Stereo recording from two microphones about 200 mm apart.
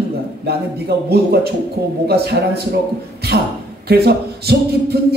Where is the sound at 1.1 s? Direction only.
55° right (ahead or behind).